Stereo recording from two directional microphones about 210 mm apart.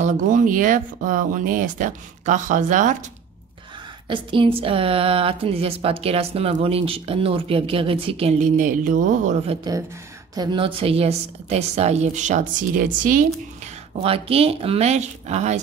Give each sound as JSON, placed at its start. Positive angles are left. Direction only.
{"t": 0.0, "sound": "a woman's voice", "side_deg": -35}
{"t": 4.1, "sound": "a woman's voice", "side_deg": -25}
{"t": 10.3, "sound": "a woman's voice", "side_deg": -20}
{"t": 14.0, "sound": "a woman's voice", "side_deg": -25}